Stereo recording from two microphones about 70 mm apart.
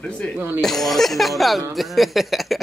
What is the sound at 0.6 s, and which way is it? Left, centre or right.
Speech, centre.